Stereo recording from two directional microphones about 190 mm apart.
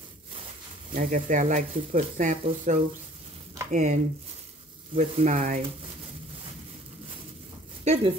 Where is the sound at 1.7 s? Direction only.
30° right (ahead or behind).